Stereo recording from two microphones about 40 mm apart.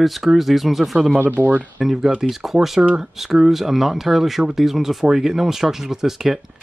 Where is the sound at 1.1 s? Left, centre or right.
Right.